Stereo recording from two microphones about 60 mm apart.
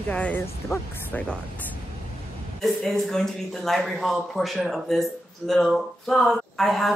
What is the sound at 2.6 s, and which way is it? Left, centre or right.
Speech, centre.